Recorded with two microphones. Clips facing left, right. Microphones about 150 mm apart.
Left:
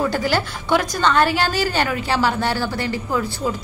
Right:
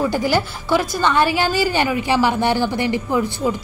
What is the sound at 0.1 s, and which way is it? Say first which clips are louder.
A woman's voice: right 2 dB; 15° right (ahead or behind).